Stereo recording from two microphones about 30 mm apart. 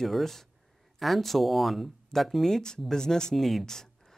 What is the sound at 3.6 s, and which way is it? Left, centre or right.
Speech, centre.